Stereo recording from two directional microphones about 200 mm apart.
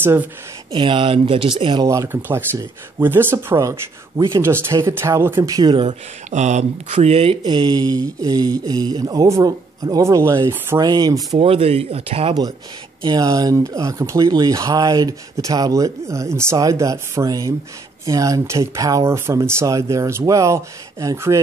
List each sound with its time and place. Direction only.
0.0 s speech: 10° right (ahead or behind)
0.7 s speech: 25° right (ahead or behind)
6.3 s speech: 35° right (ahead or behind); by 21.4 s 15° right (ahead or behind)